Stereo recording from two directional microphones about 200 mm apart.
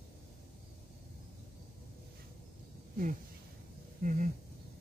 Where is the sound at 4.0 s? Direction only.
40° right (ahead or behind).